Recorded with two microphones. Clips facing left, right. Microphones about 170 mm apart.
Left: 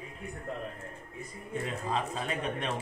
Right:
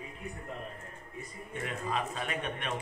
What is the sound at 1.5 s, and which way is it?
Speech, 30° left (ahead or behind).